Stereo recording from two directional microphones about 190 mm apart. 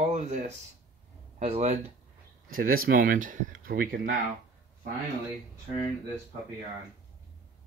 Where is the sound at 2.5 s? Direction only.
50° right (ahead or behind).